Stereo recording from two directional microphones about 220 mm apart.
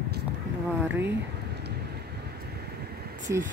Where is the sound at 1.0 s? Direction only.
50° right (ahead or behind).